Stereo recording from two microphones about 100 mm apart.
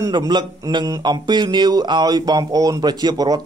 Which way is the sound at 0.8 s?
45° right (ahead or behind).